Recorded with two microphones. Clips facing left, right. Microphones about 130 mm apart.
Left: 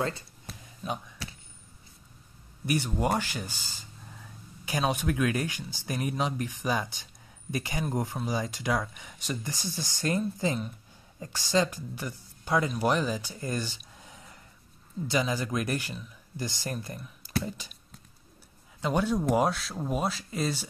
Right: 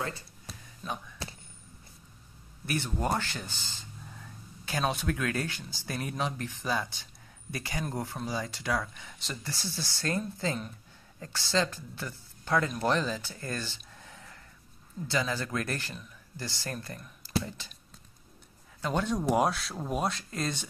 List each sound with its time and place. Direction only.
0.8 s speech: 5° left (ahead or behind)
2.6 s speech: 15° left (ahead or behind)
18.9 s speech: 5° left (ahead or behind)